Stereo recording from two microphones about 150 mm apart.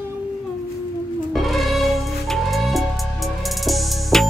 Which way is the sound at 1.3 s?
Centre (ahead or behind).